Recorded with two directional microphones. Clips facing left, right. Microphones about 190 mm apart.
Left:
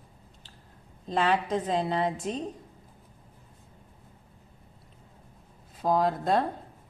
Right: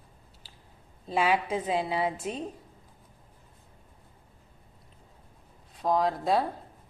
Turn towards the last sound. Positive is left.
turn(degrees=0)  # may be behind; listen again after turning